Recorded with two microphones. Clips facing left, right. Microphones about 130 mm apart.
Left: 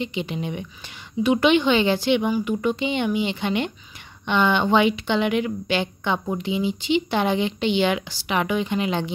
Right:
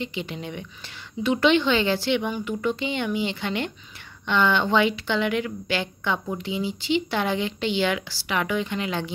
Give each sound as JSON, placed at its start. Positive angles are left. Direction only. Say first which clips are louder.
{"t": 0.0, "sound": "a woman's voice", "louder": "left 4 dB", "side_deg": 20}